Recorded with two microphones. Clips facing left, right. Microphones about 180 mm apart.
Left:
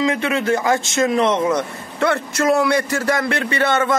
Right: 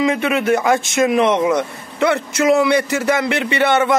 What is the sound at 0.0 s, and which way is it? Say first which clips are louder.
A man's voice: right 2 dB; 15° right (ahead or behind).